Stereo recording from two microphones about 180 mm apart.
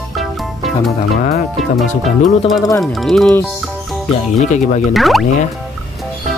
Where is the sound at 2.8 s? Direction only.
Centre (ahead or behind).